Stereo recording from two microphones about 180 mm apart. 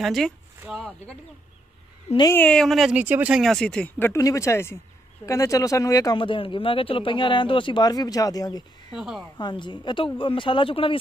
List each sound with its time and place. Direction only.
0.0 s speech: centre (ahead or behind)
2.0 s speech: 25° left (ahead or behind)
2.3 s speech: 5° left (ahead or behind)
8.9 s speech: 5° right (ahead or behind)
9.4 s speech: 25° left (ahead or behind)